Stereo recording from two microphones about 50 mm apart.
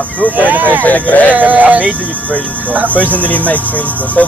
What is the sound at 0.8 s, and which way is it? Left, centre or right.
Cricket, left.